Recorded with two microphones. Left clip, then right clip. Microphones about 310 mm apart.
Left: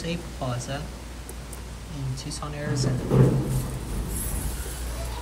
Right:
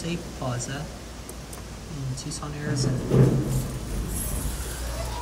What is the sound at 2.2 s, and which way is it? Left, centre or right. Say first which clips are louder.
Speech: left 1 dB; centre.